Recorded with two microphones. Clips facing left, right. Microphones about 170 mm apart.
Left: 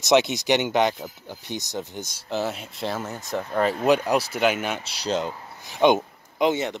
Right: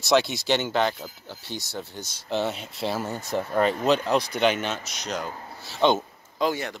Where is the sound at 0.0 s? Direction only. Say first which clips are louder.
Left 3 dB; 20° left (ahead or behind).